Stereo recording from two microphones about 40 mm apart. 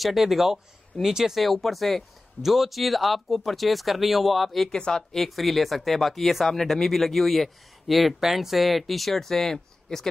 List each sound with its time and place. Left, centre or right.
0.0 s speech: centre
1.4 s speech: centre
4.6 s speech: centre
5.1 s speech: centre